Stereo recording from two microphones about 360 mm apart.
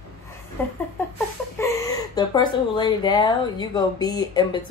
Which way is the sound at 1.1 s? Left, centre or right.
Centre.